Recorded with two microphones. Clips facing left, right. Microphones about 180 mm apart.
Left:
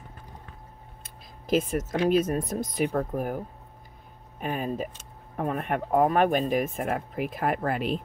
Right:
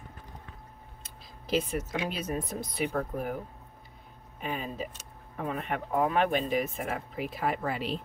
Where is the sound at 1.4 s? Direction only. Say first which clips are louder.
Left 4 dB; 45° left (ahead or behind).